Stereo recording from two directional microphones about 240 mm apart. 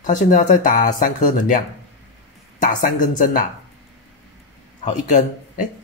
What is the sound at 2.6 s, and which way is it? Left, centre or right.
Speech, left.